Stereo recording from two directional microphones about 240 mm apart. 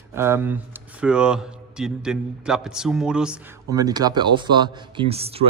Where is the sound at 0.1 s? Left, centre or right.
Centre.